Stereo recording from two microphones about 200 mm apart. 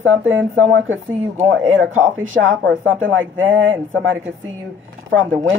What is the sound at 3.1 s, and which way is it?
Speech, 75° right (ahead or behind).